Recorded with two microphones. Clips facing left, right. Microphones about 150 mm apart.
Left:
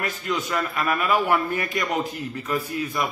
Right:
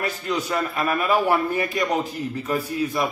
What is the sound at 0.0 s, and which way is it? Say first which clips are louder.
A man's voice: right 2 dB; 35° right (ahead or behind).